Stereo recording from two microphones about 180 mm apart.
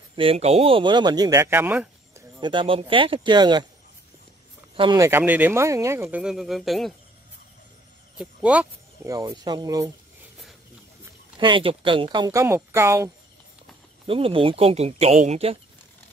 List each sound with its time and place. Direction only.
0.1 s speech: 30° right (ahead or behind); by 2.2 s 10° right (ahead or behind)
2.4 s speech: 30° right (ahead or behind)
4.7 s speech: 25° right (ahead or behind)
5.0 s speech: 10° right (ahead or behind)
8.2 s speech: 5° right (ahead or behind)
9.1 s speech: 20° right (ahead or behind)
11.3 s speech: 25° right (ahead or behind)
14.0 s speech: 30° right (ahead or behind)